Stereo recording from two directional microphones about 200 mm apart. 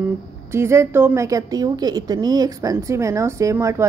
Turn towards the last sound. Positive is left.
turn(degrees=-15)  # may be behind; listen again after turning